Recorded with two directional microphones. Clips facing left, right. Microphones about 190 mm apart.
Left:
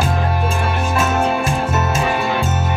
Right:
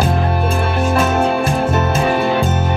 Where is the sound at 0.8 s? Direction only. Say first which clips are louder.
Right 4 dB; 35° right (ahead or behind).